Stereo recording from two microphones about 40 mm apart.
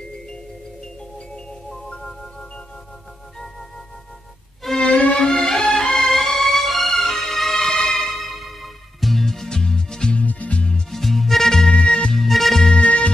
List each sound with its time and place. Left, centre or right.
4.9 s music: left
5.3 s music: centre
10.1 s music: left
10.9 s music: centre
11.7 s music: left
12.1 s music: centre
12.6 s music: left